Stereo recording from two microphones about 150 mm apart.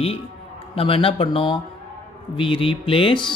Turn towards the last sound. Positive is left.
turn(degrees=35)  # may be behind; listen again after turning